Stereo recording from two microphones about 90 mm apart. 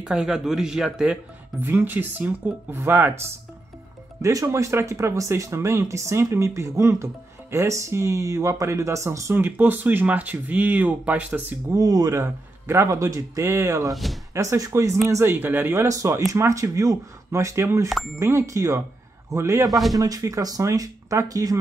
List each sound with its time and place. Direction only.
0.0 s speech: 5° right (ahead or behind)
1.7 s speech: 25° right (ahead or behind)
4.2 s speech: 35° right (ahead or behind)
9.3 s speech: 20° right (ahead or behind)
11.7 s speech: 40° right (ahead or behind)
19.7 s speech: centre (ahead or behind)
20.0 s speech: 45° right (ahead or behind)